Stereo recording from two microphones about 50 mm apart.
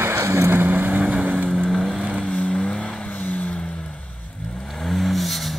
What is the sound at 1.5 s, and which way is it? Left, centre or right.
Vehicle, centre.